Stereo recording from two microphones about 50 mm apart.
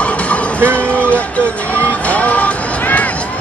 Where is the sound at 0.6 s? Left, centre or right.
Right.